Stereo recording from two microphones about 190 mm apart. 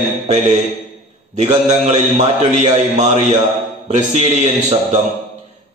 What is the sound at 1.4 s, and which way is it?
A man's voice, 35° right (ahead or behind).